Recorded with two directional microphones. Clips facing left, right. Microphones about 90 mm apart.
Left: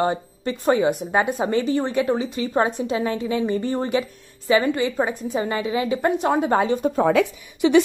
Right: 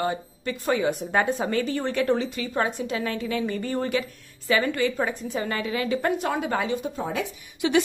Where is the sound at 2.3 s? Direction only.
25° left (ahead or behind).